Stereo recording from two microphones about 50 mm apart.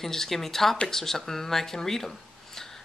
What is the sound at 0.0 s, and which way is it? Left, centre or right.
Speech, centre.